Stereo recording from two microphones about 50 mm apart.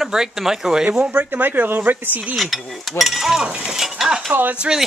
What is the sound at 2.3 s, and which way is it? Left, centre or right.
Speech, centre.